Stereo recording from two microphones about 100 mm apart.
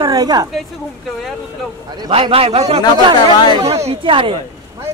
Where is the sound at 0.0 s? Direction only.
40° right (ahead or behind).